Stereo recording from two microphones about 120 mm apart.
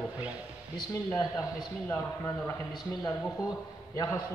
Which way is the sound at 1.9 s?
25° left (ahead or behind).